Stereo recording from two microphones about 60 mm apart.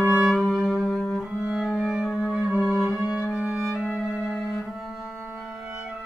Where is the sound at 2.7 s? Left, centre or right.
Centre.